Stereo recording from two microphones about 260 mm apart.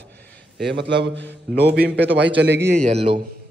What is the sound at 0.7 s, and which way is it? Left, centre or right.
A man's voice, right.